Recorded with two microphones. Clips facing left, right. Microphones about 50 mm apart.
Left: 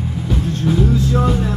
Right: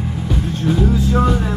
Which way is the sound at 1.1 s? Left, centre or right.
Centre.